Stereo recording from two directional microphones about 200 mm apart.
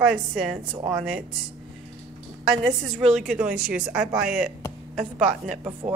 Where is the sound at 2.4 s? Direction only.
Centre (ahead or behind).